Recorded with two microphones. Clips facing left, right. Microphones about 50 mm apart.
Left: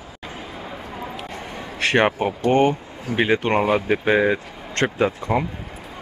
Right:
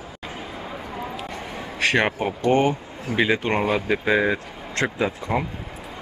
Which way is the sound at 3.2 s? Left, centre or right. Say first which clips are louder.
Left 2 dB; left.